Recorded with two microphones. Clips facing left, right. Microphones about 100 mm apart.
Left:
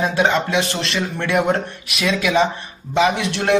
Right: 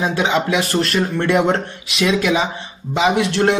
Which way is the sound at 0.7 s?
45° right (ahead or behind).